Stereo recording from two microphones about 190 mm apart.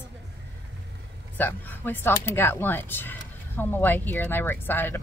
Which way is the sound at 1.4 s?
10° left (ahead or behind).